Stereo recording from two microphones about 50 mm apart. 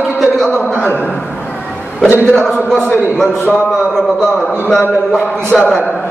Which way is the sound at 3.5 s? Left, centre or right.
Centre.